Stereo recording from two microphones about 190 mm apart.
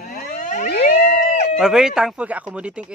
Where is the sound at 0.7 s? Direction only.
50° left (ahead or behind).